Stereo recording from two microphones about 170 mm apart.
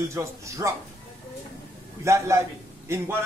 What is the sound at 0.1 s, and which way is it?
Speech, 15° right (ahead or behind).